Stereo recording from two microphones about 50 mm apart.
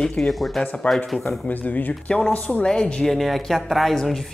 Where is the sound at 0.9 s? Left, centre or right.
Left.